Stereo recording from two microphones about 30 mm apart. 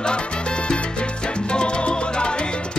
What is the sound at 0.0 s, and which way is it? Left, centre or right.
Salsa music, left.